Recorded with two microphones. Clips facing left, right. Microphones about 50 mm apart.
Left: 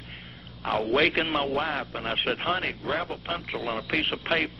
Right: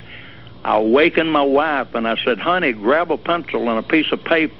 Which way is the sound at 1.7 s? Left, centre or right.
Right.